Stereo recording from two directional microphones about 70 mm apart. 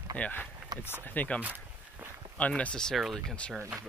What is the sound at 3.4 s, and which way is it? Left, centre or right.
Speech, centre.